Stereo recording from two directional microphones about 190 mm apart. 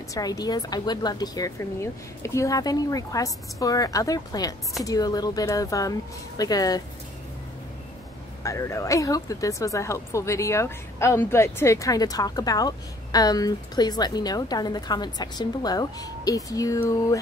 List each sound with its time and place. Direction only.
0.1 s speech: 20° left (ahead or behind)
8.5 s speech: 15° left (ahead or behind)